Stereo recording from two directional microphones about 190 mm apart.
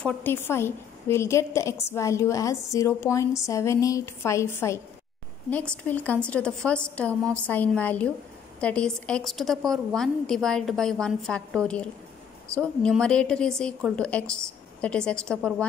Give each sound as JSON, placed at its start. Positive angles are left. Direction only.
{"t": 0.0, "sound": "a woman's voice", "side_deg": 10}
{"t": 5.9, "sound": "a woman's voice", "side_deg": 10}